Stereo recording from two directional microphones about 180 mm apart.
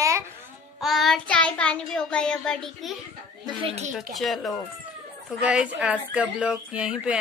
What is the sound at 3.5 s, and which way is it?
Speech, 30° right (ahead or behind).